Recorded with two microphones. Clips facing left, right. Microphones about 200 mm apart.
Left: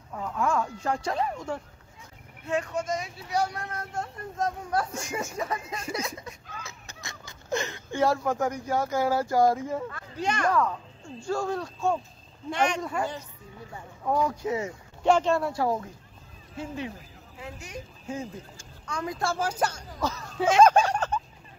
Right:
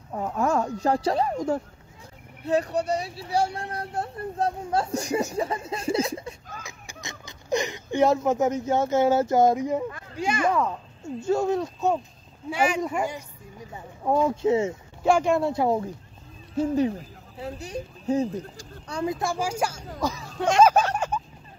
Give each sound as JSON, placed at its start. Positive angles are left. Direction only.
{"t": 0.1, "sound": "speech", "side_deg": -40}
{"t": 6.6, "sound": "speech", "side_deg": -15}
{"t": 10.5, "sound": "speech", "side_deg": -20}
{"t": 12.4, "sound": "speech", "side_deg": -5}
{"t": 15.0, "sound": "speech", "side_deg": -10}
{"t": 15.4, "sound": "speech", "side_deg": -25}
{"t": 16.5, "sound": "speech", "side_deg": -40}
{"t": 19.1, "sound": "speech", "side_deg": -15}
{"t": 20.3, "sound": "speech", "side_deg": 0}
{"t": 20.9, "sound": "fowl", "side_deg": -10}